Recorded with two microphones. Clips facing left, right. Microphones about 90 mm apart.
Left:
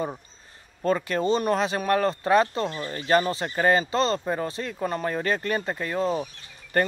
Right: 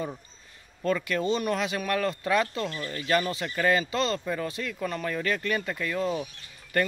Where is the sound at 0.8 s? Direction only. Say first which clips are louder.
Left 3 dB; 35° left (ahead or behind).